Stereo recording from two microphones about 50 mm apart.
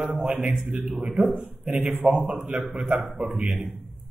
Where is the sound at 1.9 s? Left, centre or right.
Right.